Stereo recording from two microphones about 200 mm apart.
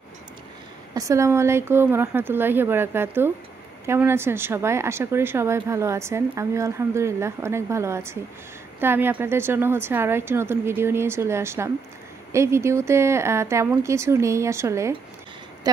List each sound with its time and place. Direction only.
0.9 s speech: 15° right (ahead or behind)